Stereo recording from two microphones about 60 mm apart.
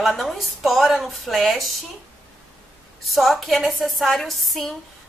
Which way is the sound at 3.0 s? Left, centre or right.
Centre.